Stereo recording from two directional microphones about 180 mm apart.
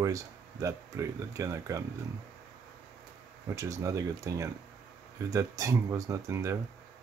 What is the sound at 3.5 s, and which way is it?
Speech, 20° right (ahead or behind).